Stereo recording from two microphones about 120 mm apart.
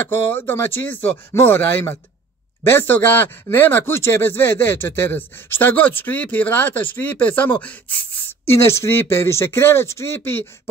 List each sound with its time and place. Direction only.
0.0 s speech: 15° left (ahead or behind)